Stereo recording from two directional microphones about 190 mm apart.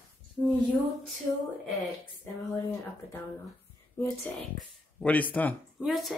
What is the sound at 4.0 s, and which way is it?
Speech, 15° left (ahead or behind).